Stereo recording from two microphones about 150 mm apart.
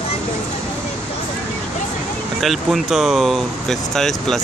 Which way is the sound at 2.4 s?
Centre (ahead or behind).